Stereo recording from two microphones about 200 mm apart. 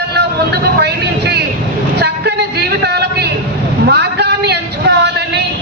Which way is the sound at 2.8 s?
55° right (ahead or behind).